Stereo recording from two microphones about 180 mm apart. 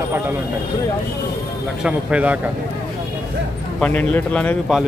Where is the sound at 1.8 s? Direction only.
5° right (ahead or behind).